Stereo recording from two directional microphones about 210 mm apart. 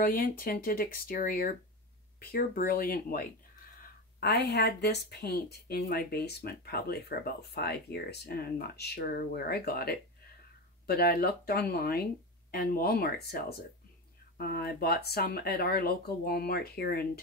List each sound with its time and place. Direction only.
0.0 s speech: 45° left (ahead or behind)